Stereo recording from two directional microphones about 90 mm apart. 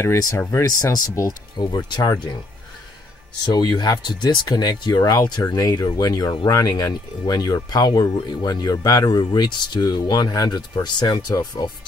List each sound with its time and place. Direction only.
0.0 s speech: 35° left (ahead or behind)
0.7 s speech: 40° left (ahead or behind)
3.4 s speech: 50° left (ahead or behind)
9.2 s speech: 55° left (ahead or behind)